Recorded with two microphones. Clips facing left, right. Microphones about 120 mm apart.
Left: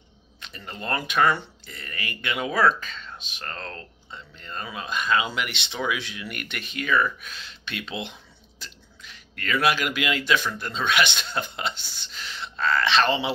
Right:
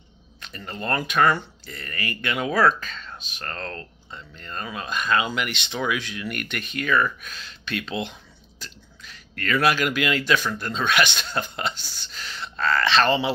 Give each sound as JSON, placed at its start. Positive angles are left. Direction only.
{"t": 0.4, "sound": "a sound", "side_deg": 15}
{"t": 0.8, "sound": "speech", "side_deg": 15}
{"t": 9.1, "sound": "speech", "side_deg": 15}